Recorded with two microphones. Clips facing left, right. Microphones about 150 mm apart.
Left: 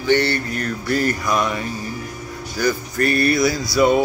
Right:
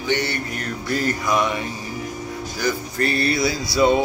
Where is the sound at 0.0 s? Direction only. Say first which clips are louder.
Left 6 dB; 15° right (ahead or behind).